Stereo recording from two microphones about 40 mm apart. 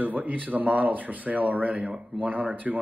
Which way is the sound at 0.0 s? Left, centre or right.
Right.